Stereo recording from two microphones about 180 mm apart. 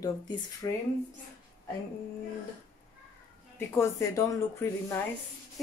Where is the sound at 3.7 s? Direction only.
15° left (ahead or behind).